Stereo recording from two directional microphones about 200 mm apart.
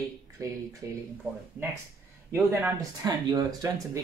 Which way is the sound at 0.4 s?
15° right (ahead or behind).